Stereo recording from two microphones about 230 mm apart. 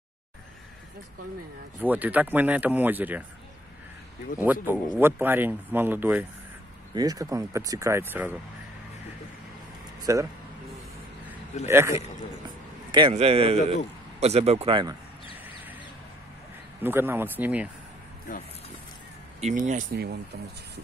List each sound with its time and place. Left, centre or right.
1.8 s speech: centre
4.4 s speech: centre
10.1 s speech: centre
11.6 s speech: centre
12.9 s a man's voice: right
16.8 s speech: centre
18.3 s speech: left
19.4 s speech: right